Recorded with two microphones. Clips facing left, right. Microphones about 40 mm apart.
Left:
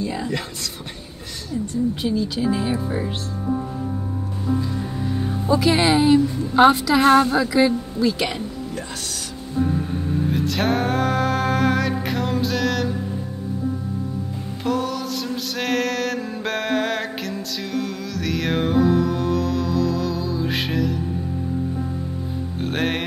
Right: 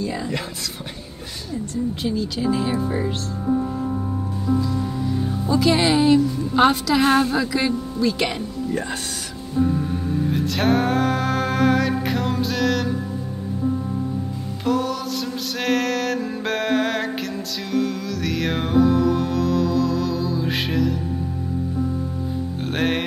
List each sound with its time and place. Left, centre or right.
0.0 s speech: centre
0.3 s a woman's voice: centre
2.0 s a woman's voice: centre
5.5 s a woman's voice: centre
8.7 s speech: right
10.3 s a sound: centre
14.6 s music: centre
22.6 s music: centre